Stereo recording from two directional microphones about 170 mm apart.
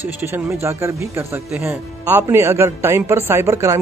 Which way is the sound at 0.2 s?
15° right (ahead or behind).